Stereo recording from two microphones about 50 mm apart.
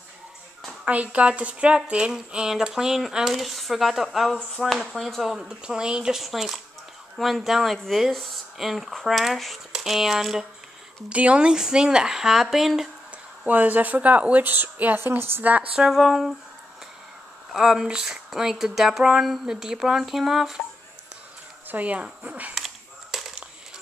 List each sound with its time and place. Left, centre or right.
0.8 s a woman's voice: right; by 5.5 s centre
5.6 s speech: centre
6.2 s speech: centre
11.1 s a woman's voice: right; by 12.9 s centre
13.5 s speech: right
15.0 s a woman's voice: right
15.4 s speech: right
15.9 s speech: centre
17.6 s speech: centre
19.4 s speech: centre
21.6 s speech: right
23.1 s a sound: centre